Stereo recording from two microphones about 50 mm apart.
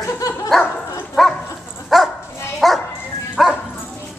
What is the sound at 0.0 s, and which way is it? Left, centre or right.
Dog, left.